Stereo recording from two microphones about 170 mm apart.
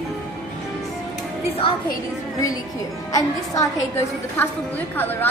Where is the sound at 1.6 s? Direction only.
30° left (ahead or behind).